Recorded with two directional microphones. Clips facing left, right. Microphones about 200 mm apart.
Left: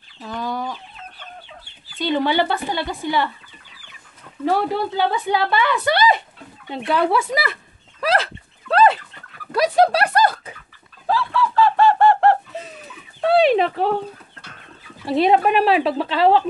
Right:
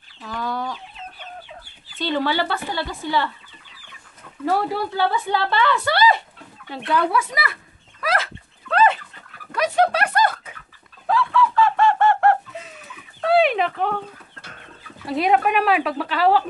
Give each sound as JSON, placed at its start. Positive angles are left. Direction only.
{"t": 0.4, "sound": "chicken", "side_deg": 15}
{"t": 2.0, "sound": "a woman's voice", "side_deg": 15}
{"t": 4.5, "sound": "a woman's voice", "side_deg": 20}
{"t": 8.6, "sound": "fowl", "side_deg": 35}
{"t": 9.5, "sound": "bird", "side_deg": 35}
{"t": 13.3, "sound": "a sound", "side_deg": 30}
{"t": 15.0, "sound": "speech", "side_deg": 30}